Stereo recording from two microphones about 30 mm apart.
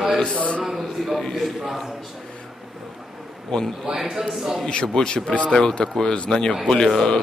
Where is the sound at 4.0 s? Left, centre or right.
Centre.